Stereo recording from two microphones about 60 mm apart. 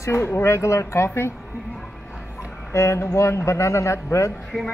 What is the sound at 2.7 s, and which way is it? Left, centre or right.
A man's voice, left.